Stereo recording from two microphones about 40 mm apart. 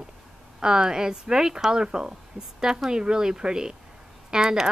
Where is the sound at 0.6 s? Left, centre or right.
Centre.